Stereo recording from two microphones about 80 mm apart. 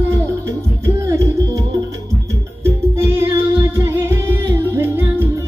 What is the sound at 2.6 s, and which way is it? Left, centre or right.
Music, right.